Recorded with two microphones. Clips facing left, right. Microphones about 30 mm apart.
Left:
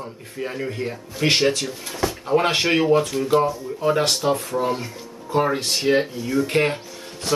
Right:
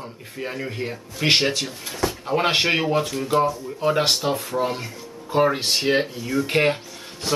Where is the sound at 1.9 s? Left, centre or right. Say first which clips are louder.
Left 3 dB; centre.